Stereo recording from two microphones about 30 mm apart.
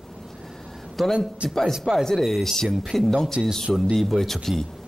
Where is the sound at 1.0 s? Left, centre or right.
Centre.